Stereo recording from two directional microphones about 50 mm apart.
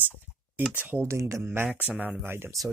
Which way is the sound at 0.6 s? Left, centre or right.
Right.